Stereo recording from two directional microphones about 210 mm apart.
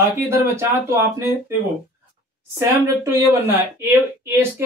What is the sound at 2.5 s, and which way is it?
Speech, 15° right (ahead or behind).